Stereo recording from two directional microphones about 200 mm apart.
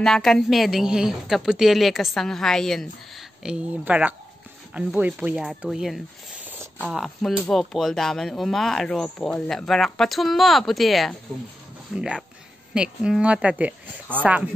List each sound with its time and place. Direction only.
0.0 s speech: centre (ahead or behind)